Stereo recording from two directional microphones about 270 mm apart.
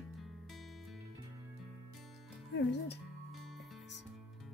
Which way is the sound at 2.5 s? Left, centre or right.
Left.